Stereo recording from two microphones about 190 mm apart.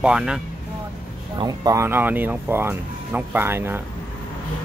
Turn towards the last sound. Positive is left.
turn(degrees=-10)  # may be behind; listen again after turning